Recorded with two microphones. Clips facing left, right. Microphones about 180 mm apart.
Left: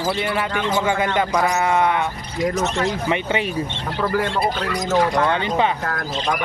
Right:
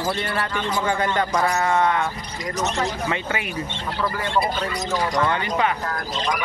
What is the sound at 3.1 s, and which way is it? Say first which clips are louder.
Speech: left 5 dB; 25° left (ahead or behind).